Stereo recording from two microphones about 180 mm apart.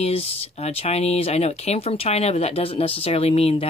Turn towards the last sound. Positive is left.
turn(degrees=35)  # may be behind; listen again after turning